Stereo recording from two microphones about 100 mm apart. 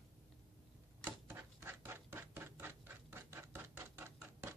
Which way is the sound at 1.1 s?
20° right (ahead or behind).